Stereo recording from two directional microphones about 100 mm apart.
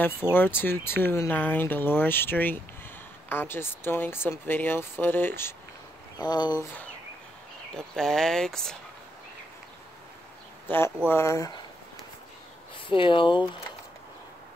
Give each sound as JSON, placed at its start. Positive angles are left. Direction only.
{"t": 0.2, "sound": "speech", "side_deg": -10}
{"t": 0.6, "sound": "speech", "side_deg": 20}
{"t": 6.1, "sound": "speech", "side_deg": 45}
{"t": 7.7, "sound": "speech", "side_deg": 5}
{"t": 10.7, "sound": "speech", "side_deg": 20}
{"t": 12.7, "sound": "speech", "side_deg": 60}